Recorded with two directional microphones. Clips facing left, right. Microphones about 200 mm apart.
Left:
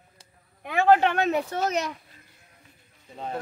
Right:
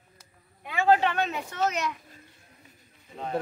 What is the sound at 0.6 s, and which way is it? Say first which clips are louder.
Speech: left 3 dB; 60° left (ahead or behind).